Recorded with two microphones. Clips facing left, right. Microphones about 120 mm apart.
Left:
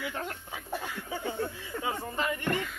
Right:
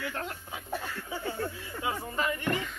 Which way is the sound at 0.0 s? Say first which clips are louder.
Even; 10° left (ahead or behind).